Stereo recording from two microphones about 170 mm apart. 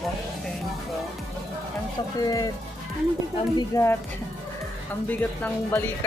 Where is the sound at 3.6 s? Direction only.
15° left (ahead or behind).